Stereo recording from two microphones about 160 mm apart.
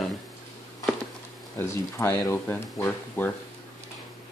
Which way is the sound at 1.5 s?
15° left (ahead or behind).